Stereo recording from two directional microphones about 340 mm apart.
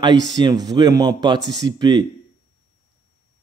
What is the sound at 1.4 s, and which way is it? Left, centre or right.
Speech, right.